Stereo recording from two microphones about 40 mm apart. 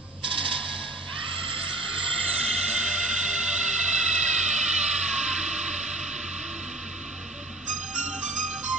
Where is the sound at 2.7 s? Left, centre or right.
Right.